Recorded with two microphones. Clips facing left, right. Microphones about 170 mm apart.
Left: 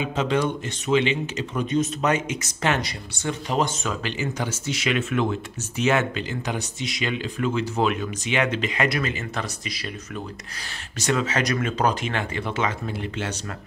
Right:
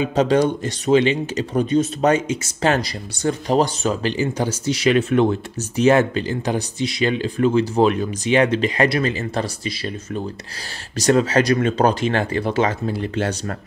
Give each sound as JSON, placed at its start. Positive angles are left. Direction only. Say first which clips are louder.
{"t": 0.0, "sound": "speech", "louder": "right 6 dB", "side_deg": -40}